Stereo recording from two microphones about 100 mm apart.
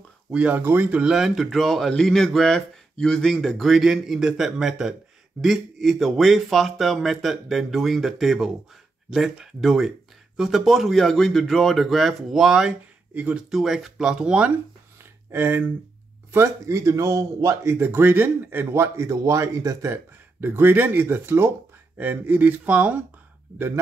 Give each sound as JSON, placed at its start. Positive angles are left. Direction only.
{"t": 0.3, "sound": "speech", "side_deg": -15}
{"t": 13.1, "sound": "speech", "side_deg": -15}
{"t": 13.5, "sound": "speech", "side_deg": -5}
{"t": 15.3, "sound": "speech", "side_deg": -20}